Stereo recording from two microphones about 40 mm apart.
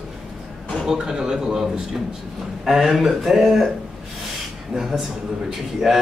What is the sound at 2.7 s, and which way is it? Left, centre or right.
Speech, centre.